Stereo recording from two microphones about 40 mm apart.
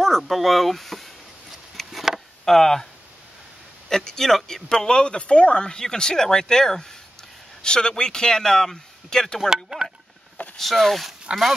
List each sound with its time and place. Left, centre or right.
0.2 s speech: centre
1.9 s chop: centre
2.4 s speech: centre
3.9 s speech: centre
4.6 s speech: centre
9.5 s speech: centre
10.6 s speech: centre